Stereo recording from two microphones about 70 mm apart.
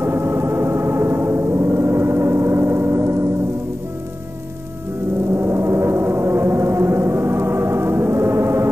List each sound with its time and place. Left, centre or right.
0.0 s music: right
5.3 s gong: right